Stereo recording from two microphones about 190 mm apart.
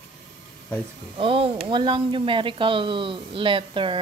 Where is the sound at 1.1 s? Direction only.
30° right (ahead or behind).